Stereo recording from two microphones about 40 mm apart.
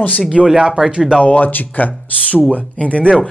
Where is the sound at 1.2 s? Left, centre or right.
Left.